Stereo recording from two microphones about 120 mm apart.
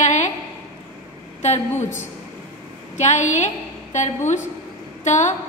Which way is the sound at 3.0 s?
90° left.